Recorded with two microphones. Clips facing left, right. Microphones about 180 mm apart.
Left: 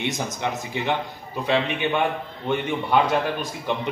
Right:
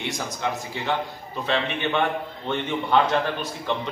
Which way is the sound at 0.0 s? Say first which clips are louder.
Left 2 dB; 20° left (ahead or behind).